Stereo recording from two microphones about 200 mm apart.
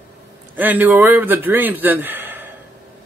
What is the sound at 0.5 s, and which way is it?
A man's voice, 10° right (ahead or behind).